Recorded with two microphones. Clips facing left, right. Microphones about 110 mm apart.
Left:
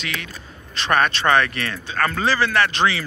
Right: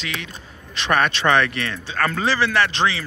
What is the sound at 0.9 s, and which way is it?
Speech, 30° left (ahead or behind).